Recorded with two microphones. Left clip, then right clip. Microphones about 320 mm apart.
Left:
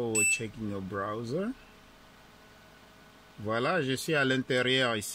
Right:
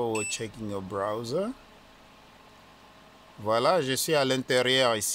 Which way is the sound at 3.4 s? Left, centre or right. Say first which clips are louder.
Right 5 dB; centre.